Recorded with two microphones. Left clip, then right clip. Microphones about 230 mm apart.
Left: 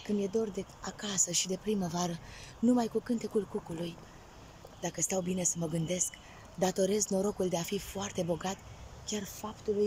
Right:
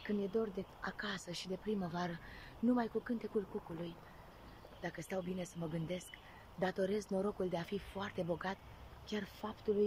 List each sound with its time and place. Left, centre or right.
0.0 s speech: centre